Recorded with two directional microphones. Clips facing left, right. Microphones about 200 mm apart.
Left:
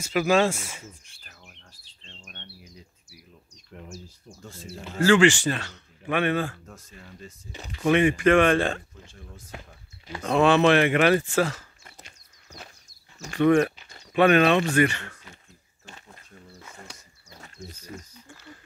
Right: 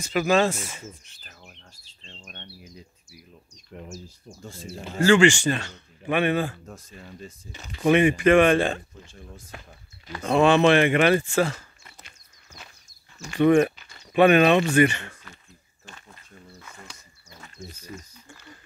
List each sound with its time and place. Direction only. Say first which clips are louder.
0.0 s speech: even; 10° left (ahead or behind)
1.2 s chirp: right 3 dB; 30° right (ahead or behind)
2.2 s insect: right 3 dB; 40° right (ahead or behind)
4.9 s speech: right 1 dB; 5° left (ahead or behind)
6.0 s speech: right 2 dB; 10° right (ahead or behind)
6.6 s speech: right 4 dB; 30° right (ahead or behind)
7.8 s speech: right 2 dB; 15° right (ahead or behind)
9.5 s speech: left 3 dB; 20° left (ahead or behind)
10.2 s speech: right 1 dB; centre (ahead or behind)
13.5 s speech: right 1 dB; 10° right (ahead or behind)
17.9 s speech: even; 50° left (ahead or behind)